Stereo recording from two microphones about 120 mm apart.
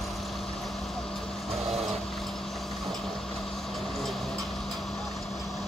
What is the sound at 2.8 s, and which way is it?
Vehicle, centre (ahead or behind).